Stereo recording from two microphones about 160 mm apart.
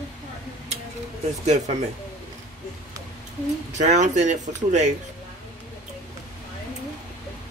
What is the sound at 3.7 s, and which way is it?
Speech, 45° right (ahead or behind).